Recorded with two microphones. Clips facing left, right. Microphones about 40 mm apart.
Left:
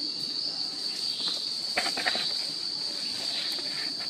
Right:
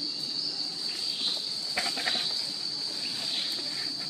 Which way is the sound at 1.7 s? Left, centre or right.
Left.